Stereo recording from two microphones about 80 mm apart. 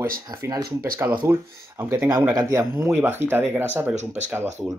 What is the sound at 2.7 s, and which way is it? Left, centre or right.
Speech, right.